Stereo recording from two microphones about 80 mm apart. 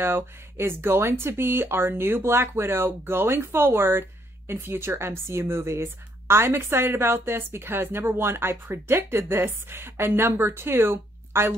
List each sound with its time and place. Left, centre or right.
0.0 s a woman's voice: right